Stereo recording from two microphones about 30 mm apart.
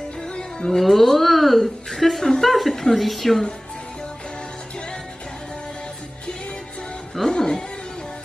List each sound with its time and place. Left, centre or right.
0.7 s a woman's voice: centre
7.2 s cat: left